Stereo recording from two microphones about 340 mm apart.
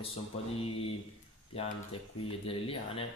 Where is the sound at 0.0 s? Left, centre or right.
Centre.